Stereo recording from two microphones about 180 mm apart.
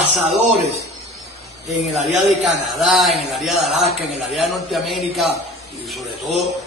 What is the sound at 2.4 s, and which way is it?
Speech, centre (ahead or behind).